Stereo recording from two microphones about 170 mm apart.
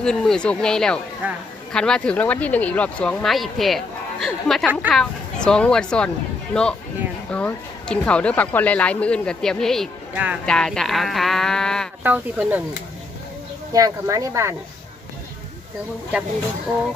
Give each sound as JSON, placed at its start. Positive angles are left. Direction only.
{"t": 0.0, "sound": "speech", "side_deg": 5}
{"t": 1.2, "sound": "speech", "side_deg": -10}
{"t": 1.7, "sound": "speech", "side_deg": 5}
{"t": 10.4, "sound": "speech", "side_deg": 5}
{"t": 12.0, "sound": "speech", "side_deg": -10}
{"t": 13.7, "sound": "speech", "side_deg": -20}